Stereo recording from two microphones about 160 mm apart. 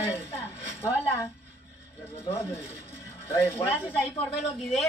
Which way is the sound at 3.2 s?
15° left (ahead or behind).